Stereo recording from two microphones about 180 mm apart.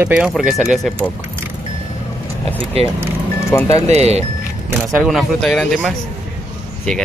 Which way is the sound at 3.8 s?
35° right (ahead or behind).